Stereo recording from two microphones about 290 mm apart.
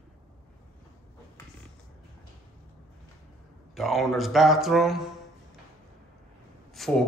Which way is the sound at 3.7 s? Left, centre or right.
Centre.